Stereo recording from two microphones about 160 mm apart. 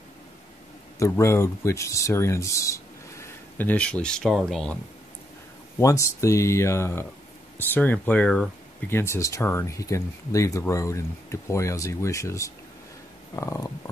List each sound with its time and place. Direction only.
0.9 s speech: 15° left (ahead or behind); by 4.7 s centre (ahead or behind)
5.8 s speech: 20° left (ahead or behind)
8.8 s speech: 15° left (ahead or behind)